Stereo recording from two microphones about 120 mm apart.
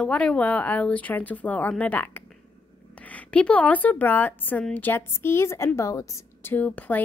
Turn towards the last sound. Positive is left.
turn(degrees=15)  # may be behind; listen again after turning